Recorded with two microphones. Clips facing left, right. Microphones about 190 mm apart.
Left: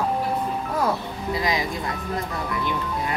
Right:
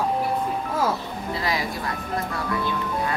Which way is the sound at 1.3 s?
15° left (ahead or behind).